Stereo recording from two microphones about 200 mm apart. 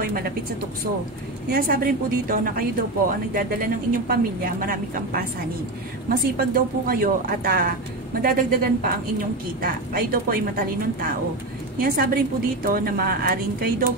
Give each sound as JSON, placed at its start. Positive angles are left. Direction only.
{"t": 0.0, "sound": "speech", "side_deg": -45}
{"t": 1.5, "sound": "a woman's voice", "side_deg": -45}